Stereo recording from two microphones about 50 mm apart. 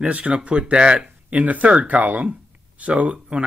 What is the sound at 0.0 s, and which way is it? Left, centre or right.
Speech, right.